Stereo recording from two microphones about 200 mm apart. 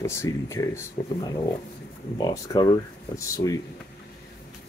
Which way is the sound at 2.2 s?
20° left (ahead or behind).